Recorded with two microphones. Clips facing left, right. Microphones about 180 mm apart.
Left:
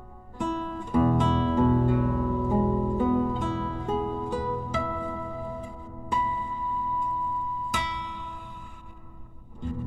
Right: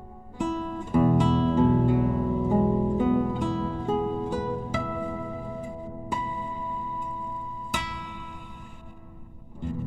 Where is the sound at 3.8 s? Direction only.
30° right (ahead or behind).